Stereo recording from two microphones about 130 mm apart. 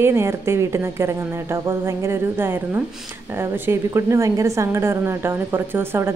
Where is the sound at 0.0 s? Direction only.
20° right (ahead or behind).